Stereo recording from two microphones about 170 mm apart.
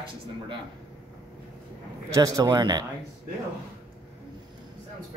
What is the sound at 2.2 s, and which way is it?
Speech, 20° right (ahead or behind).